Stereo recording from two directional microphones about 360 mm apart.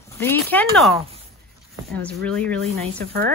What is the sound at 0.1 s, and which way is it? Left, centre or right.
A woman's voice, centre.